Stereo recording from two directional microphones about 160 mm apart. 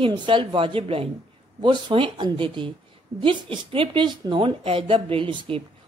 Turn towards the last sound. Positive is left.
turn(degrees=-30)  # may be behind; listen again after turning